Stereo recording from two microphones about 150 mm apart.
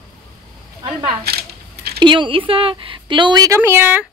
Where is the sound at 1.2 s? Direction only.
90° right.